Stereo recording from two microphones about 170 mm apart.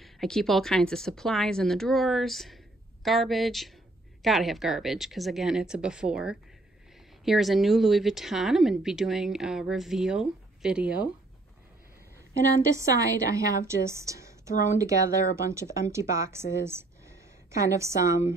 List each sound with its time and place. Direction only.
0.0 s speech: centre (ahead or behind)
12.7 s speech: 20° right (ahead or behind)